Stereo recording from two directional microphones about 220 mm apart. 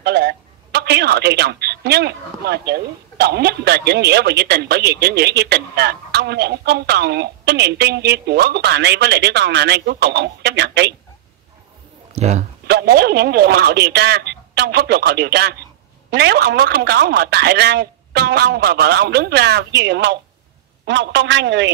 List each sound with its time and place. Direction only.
0.0 s a woman's voice: 50° right (ahead or behind)
12.1 s speech: 30° right (ahead or behind)
12.6 s a man's voice: 45° right (ahead or behind)